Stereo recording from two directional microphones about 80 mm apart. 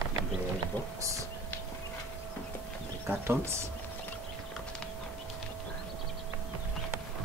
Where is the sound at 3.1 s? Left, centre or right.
Right.